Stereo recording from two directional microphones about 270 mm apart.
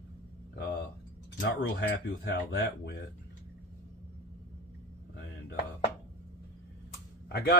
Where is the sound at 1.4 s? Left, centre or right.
Left.